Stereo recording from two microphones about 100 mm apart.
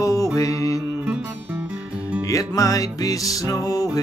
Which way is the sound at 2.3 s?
35° left (ahead or behind).